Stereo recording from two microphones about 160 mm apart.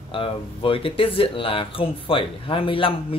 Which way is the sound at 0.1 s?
35° left (ahead or behind).